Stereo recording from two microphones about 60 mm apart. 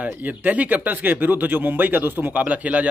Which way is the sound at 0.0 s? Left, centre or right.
Right.